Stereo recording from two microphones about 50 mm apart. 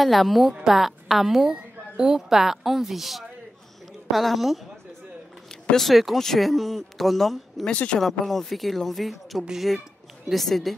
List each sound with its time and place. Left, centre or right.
0.0 s a woman's voice: centre
5.5 s speech: centre
7.7 s speech: left
8.0 s speech: centre